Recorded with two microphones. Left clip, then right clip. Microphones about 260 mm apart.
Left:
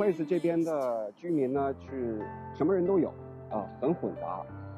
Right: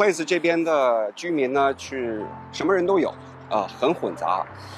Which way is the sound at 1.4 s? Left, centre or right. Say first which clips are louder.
Right 12 dB; centre.